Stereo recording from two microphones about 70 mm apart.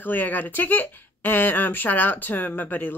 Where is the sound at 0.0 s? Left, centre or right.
Left.